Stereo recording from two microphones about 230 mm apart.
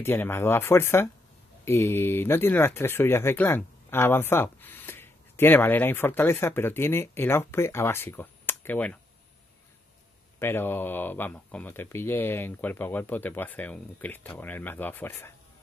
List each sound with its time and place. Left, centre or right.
0.0 s speech: centre
10.4 s speech: centre